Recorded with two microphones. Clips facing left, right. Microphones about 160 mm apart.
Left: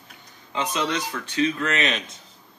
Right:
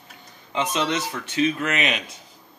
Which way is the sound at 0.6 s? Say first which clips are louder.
Right 2 dB; 20° right (ahead or behind).